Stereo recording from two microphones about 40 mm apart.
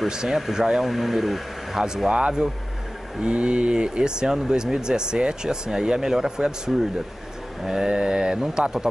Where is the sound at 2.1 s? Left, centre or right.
Right.